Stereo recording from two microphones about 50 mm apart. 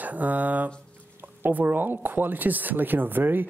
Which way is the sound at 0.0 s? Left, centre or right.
Right.